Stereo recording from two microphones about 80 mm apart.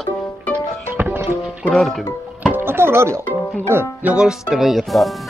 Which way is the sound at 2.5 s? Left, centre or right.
Right.